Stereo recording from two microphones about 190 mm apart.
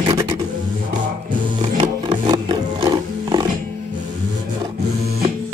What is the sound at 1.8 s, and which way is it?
Wild animals, 25° right (ahead or behind).